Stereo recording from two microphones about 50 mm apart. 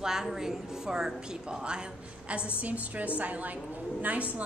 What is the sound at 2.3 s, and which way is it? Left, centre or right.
A woman's voice, right.